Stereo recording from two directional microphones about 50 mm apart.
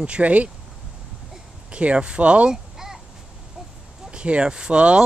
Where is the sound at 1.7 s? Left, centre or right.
Right.